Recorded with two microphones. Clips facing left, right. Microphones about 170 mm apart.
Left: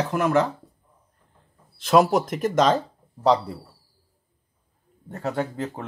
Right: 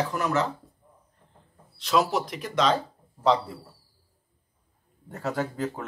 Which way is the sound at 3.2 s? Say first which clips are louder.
Left 3 dB; 35° left (ahead or behind).